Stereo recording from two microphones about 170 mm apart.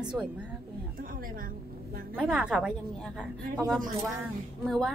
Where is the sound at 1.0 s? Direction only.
55° right (ahead or behind).